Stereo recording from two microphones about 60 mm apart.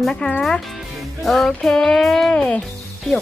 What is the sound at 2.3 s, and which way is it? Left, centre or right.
Speech, centre.